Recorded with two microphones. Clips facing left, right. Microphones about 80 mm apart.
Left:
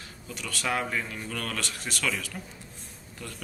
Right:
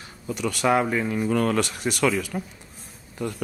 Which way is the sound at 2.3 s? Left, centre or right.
Right.